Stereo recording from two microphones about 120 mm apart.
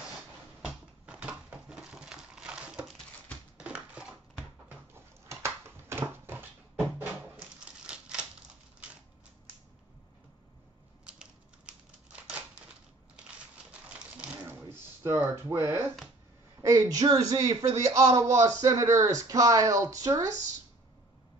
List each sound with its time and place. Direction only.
1.0 s a sound: 10° right (ahead or behind)
4.6 s dog: 20° right (ahead or behind)
7.8 s typewriter: 10° right (ahead or behind)
11.1 s a sound: 10° right (ahead or behind)
13.9 s typewriter: 10° right (ahead or behind)
16.6 s a man's voice: 30° right (ahead or behind)